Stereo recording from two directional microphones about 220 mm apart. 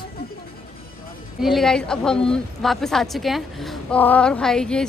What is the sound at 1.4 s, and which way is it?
A woman's voice, centre (ahead or behind).